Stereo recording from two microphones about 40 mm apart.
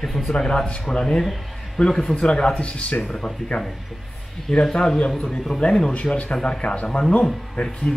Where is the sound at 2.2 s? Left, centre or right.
Left.